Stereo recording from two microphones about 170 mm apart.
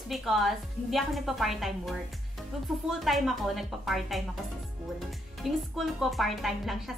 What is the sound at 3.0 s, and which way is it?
Speech, centre (ahead or behind).